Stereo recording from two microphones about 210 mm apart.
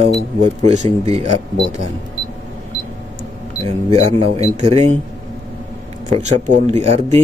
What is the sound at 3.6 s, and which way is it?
Speech, 30° right (ahead or behind).